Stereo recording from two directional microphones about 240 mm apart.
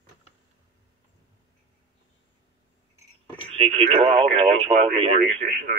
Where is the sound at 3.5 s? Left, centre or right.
Right.